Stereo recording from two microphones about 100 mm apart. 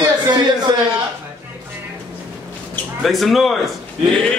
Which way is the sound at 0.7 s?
45° right (ahead or behind).